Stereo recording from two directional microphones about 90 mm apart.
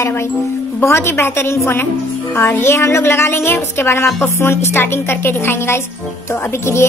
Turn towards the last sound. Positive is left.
turn(degrees=30)  # may be behind; listen again after turning